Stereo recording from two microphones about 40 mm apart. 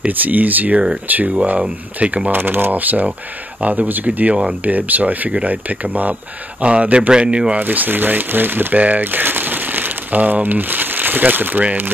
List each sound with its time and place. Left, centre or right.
0.1 s speech: right
2.3 s speech: right
6.6 s speech: right
7.5 s speech: right
8.7 s speech: right
9.0 s speech: right